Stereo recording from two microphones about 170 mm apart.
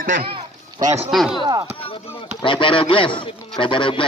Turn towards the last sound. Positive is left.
turn(degrees=30)  # may be behind; listen again after turning